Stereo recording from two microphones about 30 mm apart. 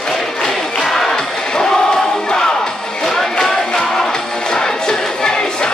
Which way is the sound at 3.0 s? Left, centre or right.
Centre.